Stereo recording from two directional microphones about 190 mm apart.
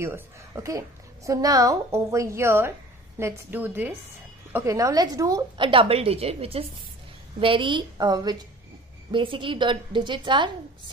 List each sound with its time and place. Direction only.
0.0 s a woman's voice: 15° right (ahead or behind)